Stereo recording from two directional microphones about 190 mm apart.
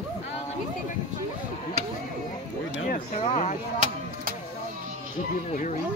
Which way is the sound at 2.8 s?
50° left (ahead or behind).